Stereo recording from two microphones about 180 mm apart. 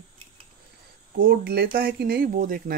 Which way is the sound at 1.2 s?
55° right (ahead or behind).